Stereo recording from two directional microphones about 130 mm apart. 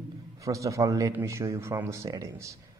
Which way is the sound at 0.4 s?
25° right (ahead or behind).